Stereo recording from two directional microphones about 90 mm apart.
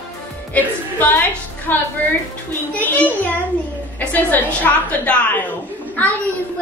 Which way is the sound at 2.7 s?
15° left (ahead or behind).